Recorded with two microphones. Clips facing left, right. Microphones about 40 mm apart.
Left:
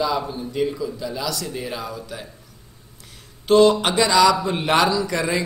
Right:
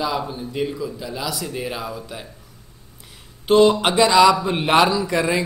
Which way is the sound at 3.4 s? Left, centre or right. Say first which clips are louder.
Even; centre.